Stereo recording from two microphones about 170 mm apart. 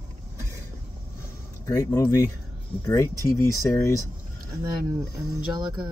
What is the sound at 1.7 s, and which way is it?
Speech, 20° left (ahead or behind).